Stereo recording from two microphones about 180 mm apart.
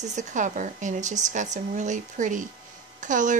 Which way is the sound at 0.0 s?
40° right (ahead or behind).